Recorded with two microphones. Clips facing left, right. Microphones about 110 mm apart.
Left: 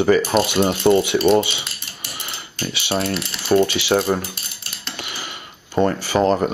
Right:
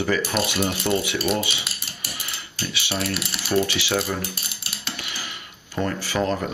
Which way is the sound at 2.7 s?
25° left (ahead or behind).